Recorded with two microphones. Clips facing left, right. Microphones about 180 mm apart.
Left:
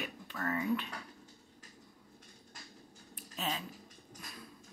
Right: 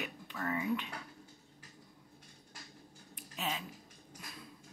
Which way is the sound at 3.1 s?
15° right (ahead or behind).